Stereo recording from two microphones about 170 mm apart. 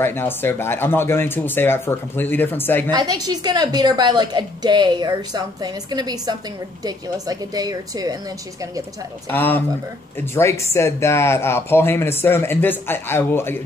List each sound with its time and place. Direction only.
0.0 s speech: 15° left (ahead or behind)
2.9 s a woman's voice: 25° right (ahead or behind)
9.3 s speech: 10° left (ahead or behind)